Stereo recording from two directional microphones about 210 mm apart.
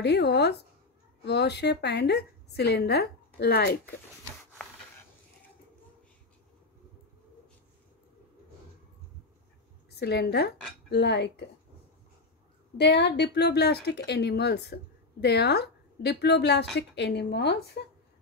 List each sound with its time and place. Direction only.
0.0 s speech: 50° left (ahead or behind)
9.8 s speech: 50° left (ahead or behind)
12.7 s speech: 55° left (ahead or behind)